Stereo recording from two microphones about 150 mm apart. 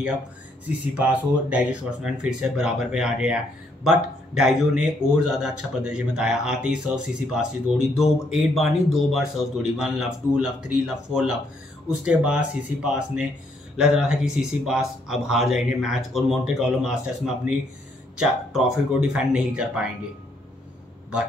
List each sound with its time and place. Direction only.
0.9 s a man's voice: 10° right (ahead or behind)